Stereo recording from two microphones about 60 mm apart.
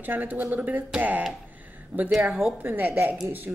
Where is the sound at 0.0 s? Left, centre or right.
Right.